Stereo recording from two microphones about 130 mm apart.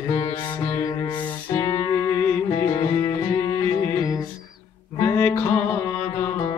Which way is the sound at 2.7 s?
40° left (ahead or behind).